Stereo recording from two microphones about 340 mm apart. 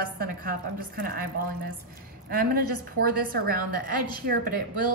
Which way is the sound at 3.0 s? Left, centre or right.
Right.